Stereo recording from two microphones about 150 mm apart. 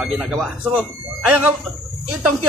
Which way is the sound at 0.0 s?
5° right (ahead or behind).